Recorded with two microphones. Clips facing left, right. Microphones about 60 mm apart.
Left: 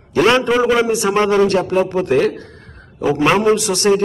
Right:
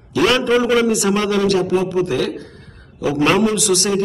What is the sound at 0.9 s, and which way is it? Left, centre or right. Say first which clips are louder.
Speech: left 2 dB; left.